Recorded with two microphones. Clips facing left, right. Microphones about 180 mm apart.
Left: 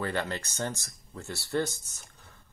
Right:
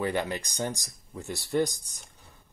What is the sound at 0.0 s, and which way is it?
Speech, 15° right (ahead or behind).